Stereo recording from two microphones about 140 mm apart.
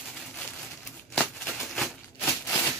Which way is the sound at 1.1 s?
5° left (ahead or behind).